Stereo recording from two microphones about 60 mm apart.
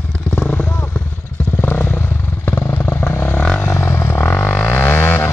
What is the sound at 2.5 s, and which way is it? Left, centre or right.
Vehicle, left.